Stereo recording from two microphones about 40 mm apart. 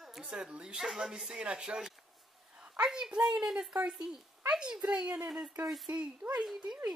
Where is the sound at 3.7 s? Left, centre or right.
Right; by 5.9 s centre.